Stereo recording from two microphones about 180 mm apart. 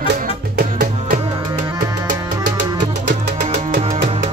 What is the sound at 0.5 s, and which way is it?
Music, 60° right (ahead or behind).